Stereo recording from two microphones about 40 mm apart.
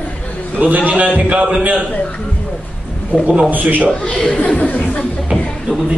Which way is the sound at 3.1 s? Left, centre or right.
Right.